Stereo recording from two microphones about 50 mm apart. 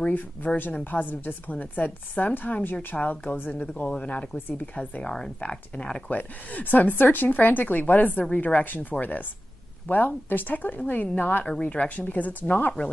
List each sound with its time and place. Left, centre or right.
0.0 s a woman's voice: left
3.6 s speech: left
6.0 s a woman's voice: left
9.8 s a woman's voice: left
11.6 s a woman's voice: left